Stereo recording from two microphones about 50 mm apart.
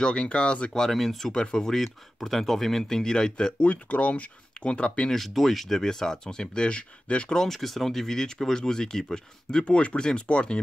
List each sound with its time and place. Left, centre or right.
0.0 s speech: left
0.7 s speech: centre
5.1 s speech: centre; by 7.3 s left
7.3 s speech: centre